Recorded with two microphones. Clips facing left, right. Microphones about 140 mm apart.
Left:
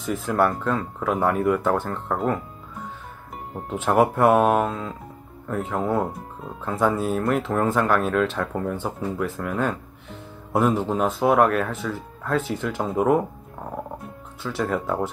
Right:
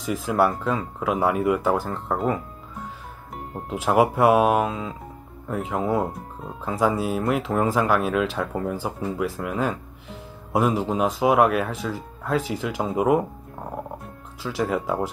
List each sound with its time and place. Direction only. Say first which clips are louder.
0.0 s speech: even; 5° right (ahead or behind)
3.7 s speech: even; 5° right (ahead or behind)
14.4 s speech: right 1 dB; 5° right (ahead or behind)